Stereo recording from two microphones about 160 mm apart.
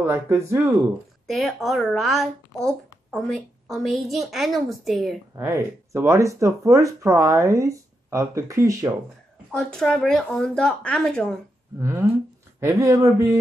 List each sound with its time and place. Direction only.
0.0 s speech: 15° right (ahead or behind)
1.3 s speech: centre (ahead or behind)
5.4 s speech: 15° right (ahead or behind)
9.5 s speech: 5° left (ahead or behind)
11.8 s speech: 15° right (ahead or behind)